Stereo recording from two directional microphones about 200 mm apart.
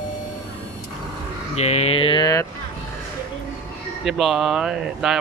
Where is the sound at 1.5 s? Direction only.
30° left (ahead or behind).